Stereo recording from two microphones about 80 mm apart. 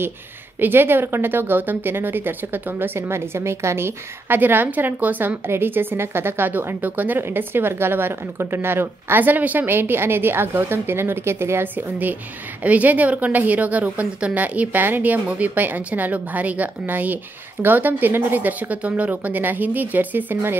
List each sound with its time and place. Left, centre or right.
0.6 s a woman's voice: right